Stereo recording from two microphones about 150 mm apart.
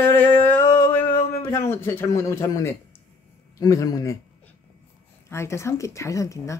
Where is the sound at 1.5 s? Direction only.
15° left (ahead or behind).